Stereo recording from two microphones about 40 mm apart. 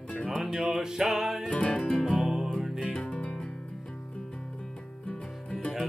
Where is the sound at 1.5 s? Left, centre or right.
Left.